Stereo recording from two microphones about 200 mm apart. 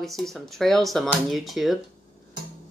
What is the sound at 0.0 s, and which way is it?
Speech, centre (ahead or behind).